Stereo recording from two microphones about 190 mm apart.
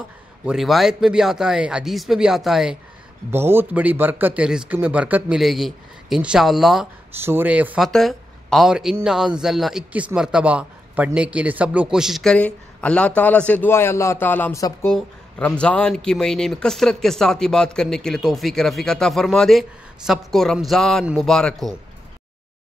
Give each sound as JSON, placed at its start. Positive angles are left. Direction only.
{"t": 0.5, "sound": "speech", "side_deg": 0}
{"t": 7.2, "sound": "speech", "side_deg": -10}